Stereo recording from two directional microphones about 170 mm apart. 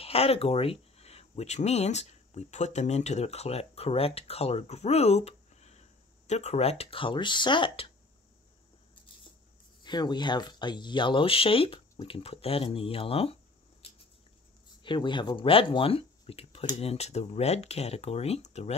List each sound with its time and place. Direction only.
0.0 s speech: 35° left (ahead or behind)
9.8 s speech: 25° left (ahead or behind)
14.8 s speech: 30° left (ahead or behind)